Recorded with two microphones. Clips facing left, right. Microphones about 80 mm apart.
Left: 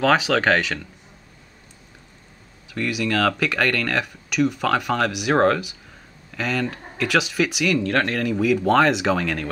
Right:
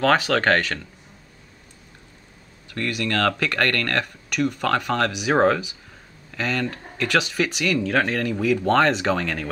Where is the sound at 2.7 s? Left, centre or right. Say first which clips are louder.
Left 2 dB; centre.